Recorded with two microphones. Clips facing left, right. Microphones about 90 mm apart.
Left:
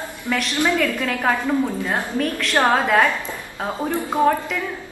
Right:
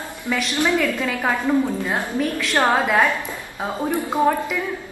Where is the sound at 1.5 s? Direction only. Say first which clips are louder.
Right 1 dB; 5° right (ahead or behind).